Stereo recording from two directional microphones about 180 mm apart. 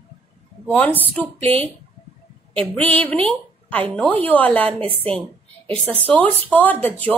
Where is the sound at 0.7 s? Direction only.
10° left (ahead or behind).